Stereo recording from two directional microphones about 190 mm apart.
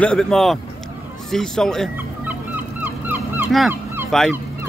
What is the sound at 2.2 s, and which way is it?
Fowl, 10° right (ahead or behind).